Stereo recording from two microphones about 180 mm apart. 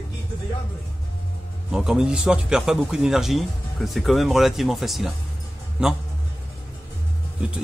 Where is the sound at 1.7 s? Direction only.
Centre (ahead or behind).